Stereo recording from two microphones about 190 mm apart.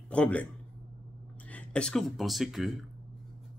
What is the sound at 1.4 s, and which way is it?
Speech, 5° left (ahead or behind).